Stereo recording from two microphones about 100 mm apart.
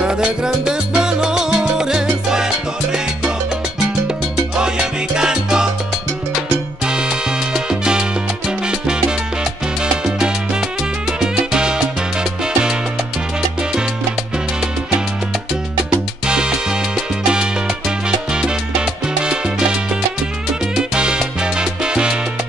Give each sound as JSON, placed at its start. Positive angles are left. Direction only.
{"t": 0.0, "sound": "salsa music", "side_deg": -10}
{"t": 4.6, "sound": "salsa music", "side_deg": -10}
{"t": 6.9, "sound": "salsa music", "side_deg": -10}
{"t": 16.3, "sound": "salsa music", "side_deg": -10}